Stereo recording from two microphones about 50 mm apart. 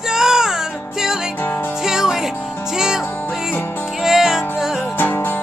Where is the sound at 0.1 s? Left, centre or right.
Centre.